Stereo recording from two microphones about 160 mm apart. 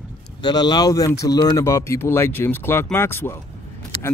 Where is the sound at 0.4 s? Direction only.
25° left (ahead or behind).